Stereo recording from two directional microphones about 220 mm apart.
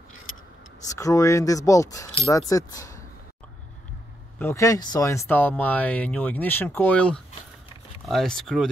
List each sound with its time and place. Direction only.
0.8 s speech: 15° left (ahead or behind)
4.4 s speech: 10° left (ahead or behind)